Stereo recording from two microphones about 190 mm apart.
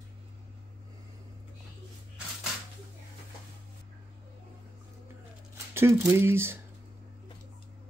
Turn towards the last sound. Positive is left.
turn(degrees=-10)  # may be behind; listen again after turning